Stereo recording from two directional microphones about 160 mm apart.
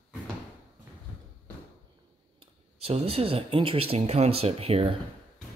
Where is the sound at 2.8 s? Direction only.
40° right (ahead or behind).